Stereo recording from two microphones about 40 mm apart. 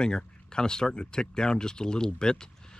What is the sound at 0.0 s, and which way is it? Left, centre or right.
Speech, left.